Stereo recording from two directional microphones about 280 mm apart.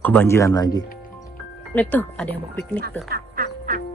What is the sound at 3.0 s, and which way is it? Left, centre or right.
Music, right.